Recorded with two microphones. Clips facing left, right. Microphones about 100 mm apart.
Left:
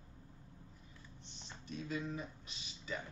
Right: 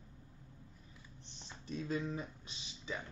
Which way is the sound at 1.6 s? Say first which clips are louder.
Right 3 dB; 35° right (ahead or behind).